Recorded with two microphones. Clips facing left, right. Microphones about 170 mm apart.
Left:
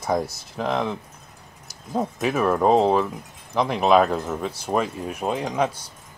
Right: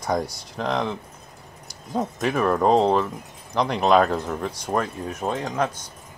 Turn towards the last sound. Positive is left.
turn(degrees=10)  # may be behind; listen again after turning